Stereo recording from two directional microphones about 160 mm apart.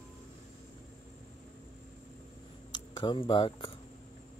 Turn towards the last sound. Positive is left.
turn(degrees=35)  # may be behind; listen again after turning